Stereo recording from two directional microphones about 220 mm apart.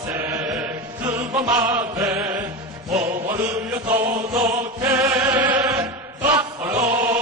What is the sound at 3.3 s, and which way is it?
Mantra, 10° right (ahead or behind).